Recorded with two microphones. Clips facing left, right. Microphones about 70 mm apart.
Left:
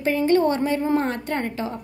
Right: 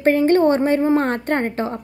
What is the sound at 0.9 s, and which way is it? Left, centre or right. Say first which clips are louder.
Speech: right 5 dB; right.